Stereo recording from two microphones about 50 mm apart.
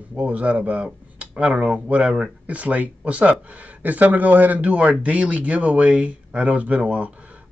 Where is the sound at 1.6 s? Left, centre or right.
Right.